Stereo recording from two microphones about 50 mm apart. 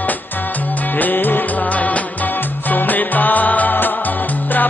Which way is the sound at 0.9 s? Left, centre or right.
Left.